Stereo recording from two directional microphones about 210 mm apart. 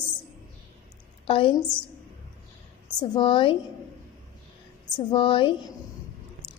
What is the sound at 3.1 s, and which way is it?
Speech, 25° left (ahead or behind).